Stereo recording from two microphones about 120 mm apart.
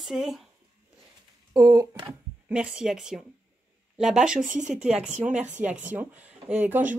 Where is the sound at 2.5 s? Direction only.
5° right (ahead or behind).